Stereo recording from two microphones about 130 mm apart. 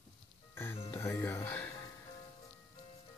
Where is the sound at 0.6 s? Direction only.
20° left (ahead or behind).